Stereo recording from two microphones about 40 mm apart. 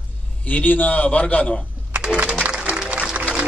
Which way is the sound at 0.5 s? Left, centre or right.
Left.